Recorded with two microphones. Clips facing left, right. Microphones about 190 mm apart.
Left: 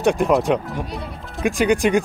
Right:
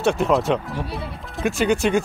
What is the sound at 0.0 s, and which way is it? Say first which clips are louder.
Speech: left 2 dB; 15° left (ahead or behind).